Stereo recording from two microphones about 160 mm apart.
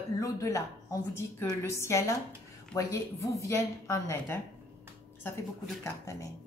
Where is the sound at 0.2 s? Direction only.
20° left (ahead or behind).